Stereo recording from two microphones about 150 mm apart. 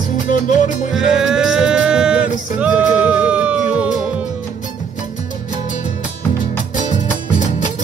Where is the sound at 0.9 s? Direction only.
5° right (ahead or behind).